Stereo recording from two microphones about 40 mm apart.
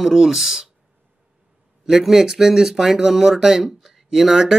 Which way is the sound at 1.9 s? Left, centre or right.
Centre.